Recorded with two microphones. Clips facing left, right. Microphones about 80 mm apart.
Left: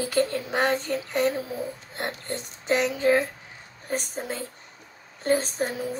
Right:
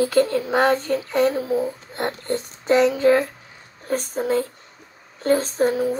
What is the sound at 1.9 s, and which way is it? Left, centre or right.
Female singing, right.